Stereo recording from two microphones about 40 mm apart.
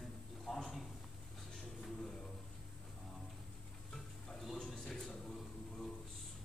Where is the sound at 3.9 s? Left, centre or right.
Centre.